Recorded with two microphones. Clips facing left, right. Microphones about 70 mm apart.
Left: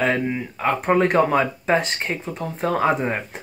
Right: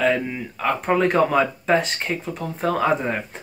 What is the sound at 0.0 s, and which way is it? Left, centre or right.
Speech, centre.